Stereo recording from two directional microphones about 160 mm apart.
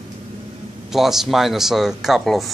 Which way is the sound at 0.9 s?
Centre (ahead or behind).